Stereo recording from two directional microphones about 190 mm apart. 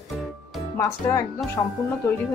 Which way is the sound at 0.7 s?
15° left (ahead or behind).